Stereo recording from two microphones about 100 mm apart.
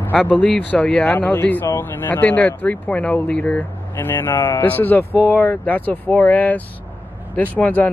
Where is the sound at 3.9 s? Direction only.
25° left (ahead or behind).